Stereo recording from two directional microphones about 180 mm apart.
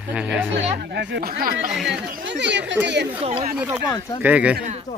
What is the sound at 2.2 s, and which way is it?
Speech, 80° right.